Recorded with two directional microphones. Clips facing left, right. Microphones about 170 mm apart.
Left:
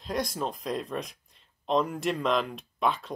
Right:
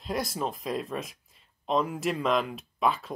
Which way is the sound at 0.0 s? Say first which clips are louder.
Even; 5° right (ahead or behind).